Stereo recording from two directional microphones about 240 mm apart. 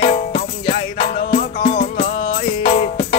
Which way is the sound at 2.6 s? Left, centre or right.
Left.